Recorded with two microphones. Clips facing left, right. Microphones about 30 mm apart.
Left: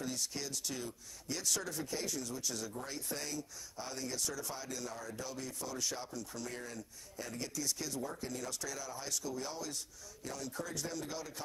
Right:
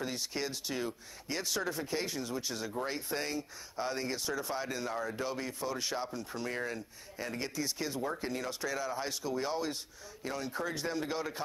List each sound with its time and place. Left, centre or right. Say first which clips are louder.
0.0 s speech: right 4 dB; right